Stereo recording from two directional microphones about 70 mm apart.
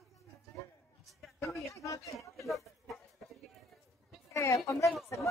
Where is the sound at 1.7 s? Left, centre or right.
Left.